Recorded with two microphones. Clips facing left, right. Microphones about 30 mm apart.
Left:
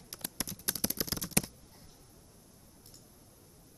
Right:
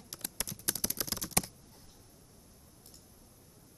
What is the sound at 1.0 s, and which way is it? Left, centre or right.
Typing, centre.